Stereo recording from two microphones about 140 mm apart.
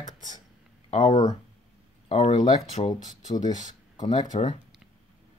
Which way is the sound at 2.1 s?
55° left (ahead or behind).